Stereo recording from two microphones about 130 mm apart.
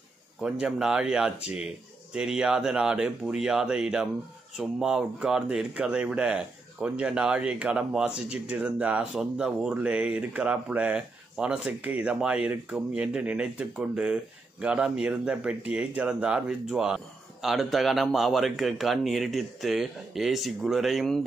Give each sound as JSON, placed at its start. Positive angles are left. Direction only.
{"t": 0.4, "sound": "speech", "side_deg": -5}